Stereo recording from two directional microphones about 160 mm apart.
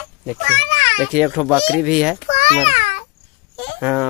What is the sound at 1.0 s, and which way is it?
Speech, 5° right (ahead or behind).